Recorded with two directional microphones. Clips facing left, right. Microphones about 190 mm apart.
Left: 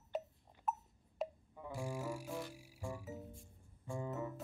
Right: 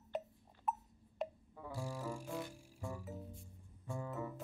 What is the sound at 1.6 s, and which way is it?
Music, 15° left (ahead or behind).